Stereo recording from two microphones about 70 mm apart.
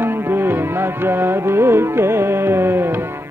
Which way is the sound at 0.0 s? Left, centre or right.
Right.